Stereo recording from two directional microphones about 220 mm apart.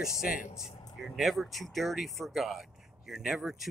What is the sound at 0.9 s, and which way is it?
Speech, centre (ahead or behind).